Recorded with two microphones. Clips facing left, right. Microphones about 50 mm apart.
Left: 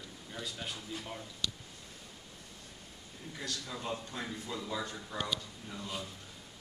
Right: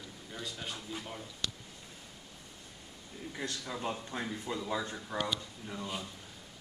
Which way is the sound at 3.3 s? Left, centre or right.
Right.